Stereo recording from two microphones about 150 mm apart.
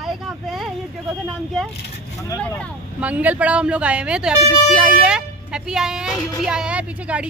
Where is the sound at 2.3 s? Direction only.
15° left (ahead or behind).